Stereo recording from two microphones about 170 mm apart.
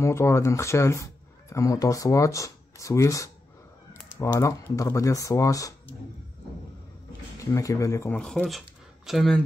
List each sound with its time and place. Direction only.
0.0 s speech: 15° left (ahead or behind)
3.9 s typing: 20° left (ahead or behind)
4.7 s speech: 20° left (ahead or behind)
7.3 s speech: 20° left (ahead or behind)
8.2 s speech: 5° left (ahead or behind)